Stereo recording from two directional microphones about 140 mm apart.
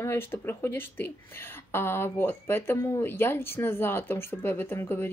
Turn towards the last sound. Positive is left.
turn(degrees=15)  # may be behind; listen again after turning